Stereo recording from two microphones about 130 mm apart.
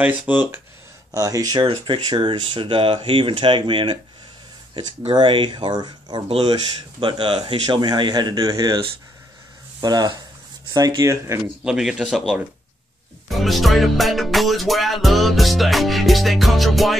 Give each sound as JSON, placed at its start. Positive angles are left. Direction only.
{"t": 0.0, "sound": "speech", "side_deg": -10}
{"t": 1.1, "sound": "speech", "side_deg": -30}
{"t": 6.2, "sound": "speech", "side_deg": -45}
{"t": 11.6, "sound": "music", "side_deg": -5}